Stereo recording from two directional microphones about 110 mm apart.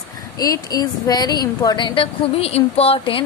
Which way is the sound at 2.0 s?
65° left (ahead or behind).